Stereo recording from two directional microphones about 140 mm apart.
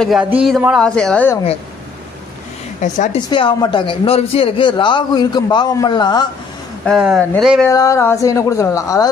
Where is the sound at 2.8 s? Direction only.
60° left (ahead or behind).